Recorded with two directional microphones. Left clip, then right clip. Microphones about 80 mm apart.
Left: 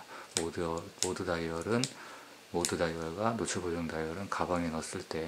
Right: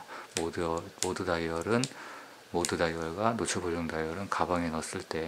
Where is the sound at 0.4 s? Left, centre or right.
Right.